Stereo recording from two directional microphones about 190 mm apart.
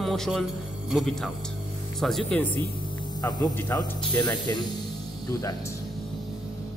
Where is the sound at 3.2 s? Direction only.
20° left (ahead or behind).